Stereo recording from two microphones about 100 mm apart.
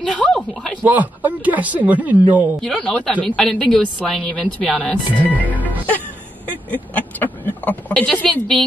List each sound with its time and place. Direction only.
0.2 s a sound: 5° left (ahead or behind)
0.8 s speech: 15° right (ahead or behind)
2.6 s speech: 10° left (ahead or behind)
5.4 s music: 15° right (ahead or behind)
6.5 s a sound: 15° left (ahead or behind)
7.4 s speech: 15° left (ahead or behind)